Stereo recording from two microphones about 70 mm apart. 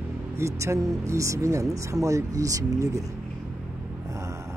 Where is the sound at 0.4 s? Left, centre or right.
Right.